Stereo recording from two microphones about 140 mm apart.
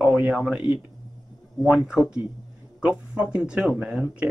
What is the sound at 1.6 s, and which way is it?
Speech, 5° right (ahead or behind).